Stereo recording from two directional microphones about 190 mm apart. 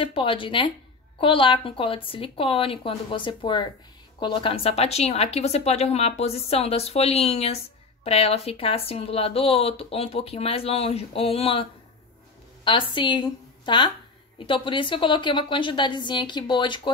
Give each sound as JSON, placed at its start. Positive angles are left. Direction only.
{"t": 0.0, "sound": "a woman's voice", "side_deg": 30}
{"t": 12.6, "sound": "a woman's voice", "side_deg": 25}